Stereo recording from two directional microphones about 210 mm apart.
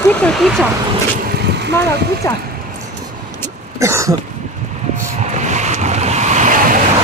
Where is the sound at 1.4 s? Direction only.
55° right (ahead or behind).